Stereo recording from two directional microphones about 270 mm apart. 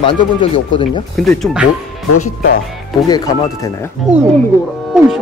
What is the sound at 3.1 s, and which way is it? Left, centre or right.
Speech, centre.